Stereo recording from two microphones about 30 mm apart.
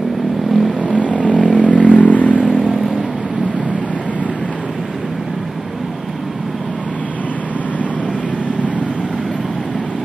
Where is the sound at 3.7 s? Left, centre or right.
Left.